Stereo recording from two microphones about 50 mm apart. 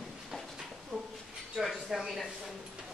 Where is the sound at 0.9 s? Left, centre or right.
Right.